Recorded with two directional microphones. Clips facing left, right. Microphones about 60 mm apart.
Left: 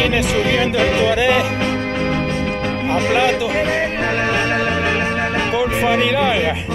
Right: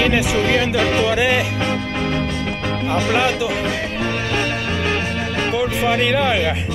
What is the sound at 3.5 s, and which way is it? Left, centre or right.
Music, left.